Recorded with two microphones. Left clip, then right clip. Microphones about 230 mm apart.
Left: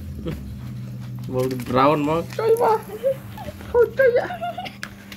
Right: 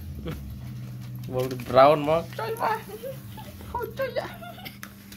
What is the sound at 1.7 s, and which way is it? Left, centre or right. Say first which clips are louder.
Speech: right 1 dB; centre.